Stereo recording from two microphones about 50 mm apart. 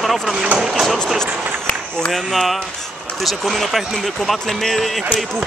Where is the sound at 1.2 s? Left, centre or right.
Centre.